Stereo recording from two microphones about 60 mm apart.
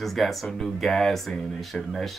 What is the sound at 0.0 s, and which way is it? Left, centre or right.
Speech, centre.